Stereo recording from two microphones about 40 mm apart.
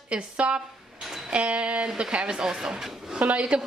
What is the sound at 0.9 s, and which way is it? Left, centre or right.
Guitar, centre.